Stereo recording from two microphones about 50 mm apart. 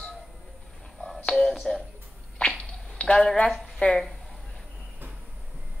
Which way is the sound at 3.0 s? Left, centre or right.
Centre.